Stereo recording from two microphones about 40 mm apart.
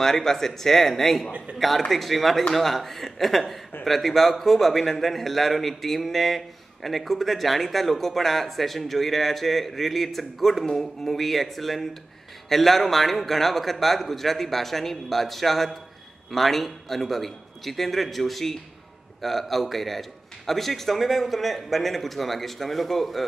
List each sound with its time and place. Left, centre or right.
0.0 s speech: centre
1.5 s a man's voice: right
1.9 s a man's voice: centre